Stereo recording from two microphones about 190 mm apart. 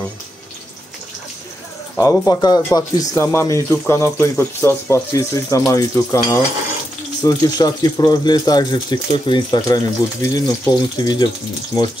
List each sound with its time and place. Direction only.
2.0 s speech: 15° left (ahead or behind)